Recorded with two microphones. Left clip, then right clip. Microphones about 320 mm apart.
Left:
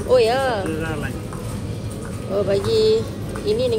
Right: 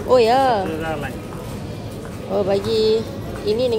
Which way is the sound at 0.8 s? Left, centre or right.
Centre.